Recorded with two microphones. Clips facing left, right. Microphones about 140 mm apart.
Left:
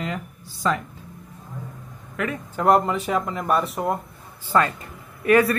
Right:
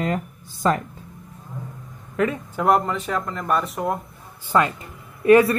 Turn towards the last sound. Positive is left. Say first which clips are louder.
# right 4 dB
turn(degrees=-25)  # may be behind; listen again after turning